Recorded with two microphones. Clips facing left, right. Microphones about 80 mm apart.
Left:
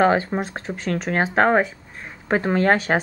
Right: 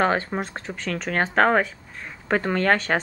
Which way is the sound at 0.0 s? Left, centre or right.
Centre.